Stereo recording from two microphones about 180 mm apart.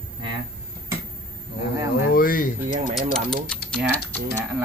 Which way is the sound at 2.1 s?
50° left (ahead or behind).